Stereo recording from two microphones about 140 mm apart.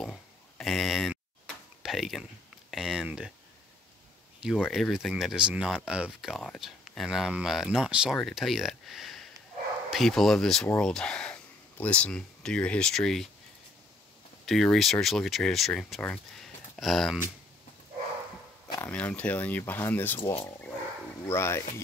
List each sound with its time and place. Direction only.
0.0 s a sound: centre (ahead or behind)
2.7 s speech: 5° right (ahead or behind)
4.4 s speech: 5° right (ahead or behind)
14.4 s speech: centre (ahead or behind)
18.8 s speech: 10° left (ahead or behind)
21.3 s speech: 20° left (ahead or behind)